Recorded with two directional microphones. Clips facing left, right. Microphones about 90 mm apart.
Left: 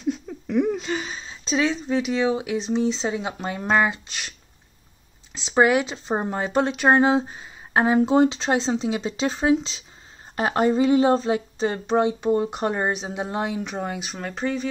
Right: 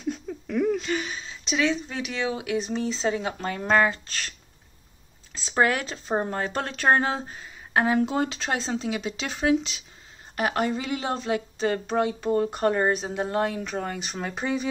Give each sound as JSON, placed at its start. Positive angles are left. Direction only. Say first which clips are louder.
{"t": 0.5, "sound": "speech", "louder": "left 2 dB", "side_deg": 15}
{"t": 14.1, "sound": "speech", "louder": "even", "side_deg": -5}